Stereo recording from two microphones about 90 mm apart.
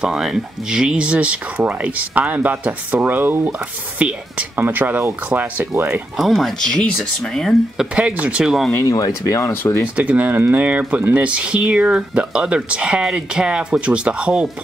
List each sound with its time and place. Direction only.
0.0 s speech: 5° right (ahead or behind)
6.1 s speech: centre (ahead or behind)
8.8 s speech: 40° left (ahead or behind)
9.9 s speech: 15° right (ahead or behind)